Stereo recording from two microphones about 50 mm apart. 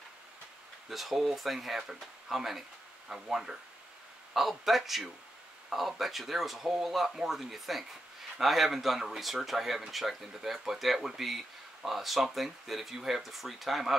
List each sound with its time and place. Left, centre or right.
0.8 s speech: centre